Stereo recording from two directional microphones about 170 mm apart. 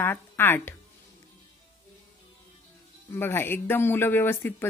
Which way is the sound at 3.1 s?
15° left (ahead or behind).